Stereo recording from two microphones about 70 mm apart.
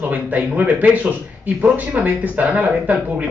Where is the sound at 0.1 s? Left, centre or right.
Right.